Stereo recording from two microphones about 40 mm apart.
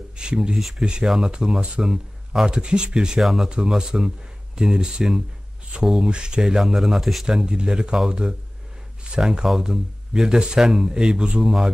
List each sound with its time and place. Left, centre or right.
0.1 s speech: right
2.4 s speech: right
3.2 s speech: centre
3.4 s speech: right
5.7 s speech: right; by 7.2 s centre
7.2 s speech: centre
11.4 s speech: centre